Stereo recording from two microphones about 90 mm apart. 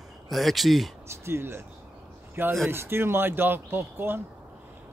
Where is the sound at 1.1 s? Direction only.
30° right (ahead or behind).